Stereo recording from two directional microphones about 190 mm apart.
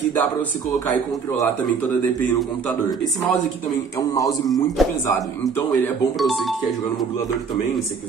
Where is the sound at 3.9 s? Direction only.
20° left (ahead or behind).